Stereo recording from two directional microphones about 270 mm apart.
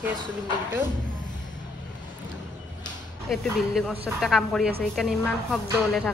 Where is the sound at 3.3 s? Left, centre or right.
Centre.